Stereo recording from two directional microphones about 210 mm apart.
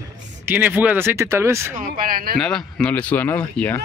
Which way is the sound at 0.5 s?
10° right (ahead or behind).